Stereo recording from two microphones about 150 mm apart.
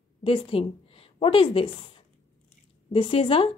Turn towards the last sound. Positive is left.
turn(degrees=40)  # may be behind; listen again after turning